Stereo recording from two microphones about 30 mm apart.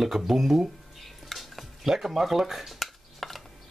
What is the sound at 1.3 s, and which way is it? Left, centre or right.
Stir, centre.